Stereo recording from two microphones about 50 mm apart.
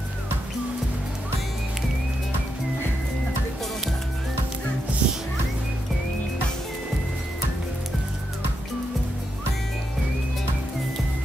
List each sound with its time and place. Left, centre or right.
5.0 s music: right